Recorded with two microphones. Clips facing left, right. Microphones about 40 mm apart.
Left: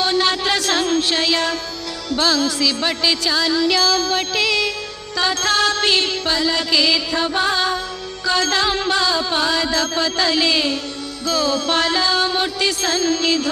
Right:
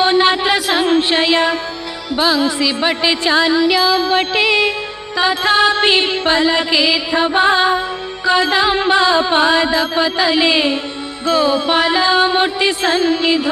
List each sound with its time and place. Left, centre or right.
0.0 s music: right